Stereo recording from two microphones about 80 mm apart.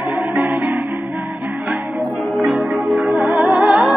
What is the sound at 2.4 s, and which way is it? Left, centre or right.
Music, centre.